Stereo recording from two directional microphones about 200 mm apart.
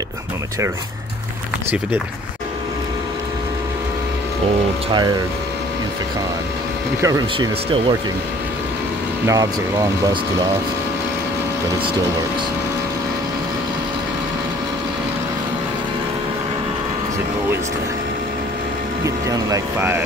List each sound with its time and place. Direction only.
4.9 s speech: 20° right (ahead or behind)
7.0 s speech: 15° right (ahead or behind)
9.2 s speech: 15° right (ahead or behind)
19.0 s speech: 15° right (ahead or behind)